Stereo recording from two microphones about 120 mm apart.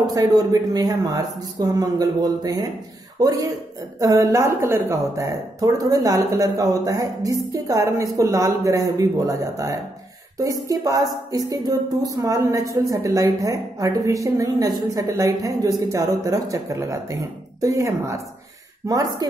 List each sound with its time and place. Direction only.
0.0 s speech: 30° right (ahead or behind)